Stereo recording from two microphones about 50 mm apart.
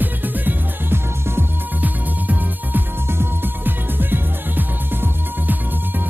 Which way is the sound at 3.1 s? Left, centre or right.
Right.